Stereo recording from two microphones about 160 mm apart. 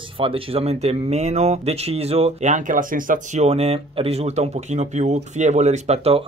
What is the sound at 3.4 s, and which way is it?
Speech, 40° right (ahead or behind).